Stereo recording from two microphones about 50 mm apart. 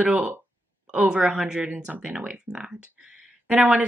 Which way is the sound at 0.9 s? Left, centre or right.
Centre.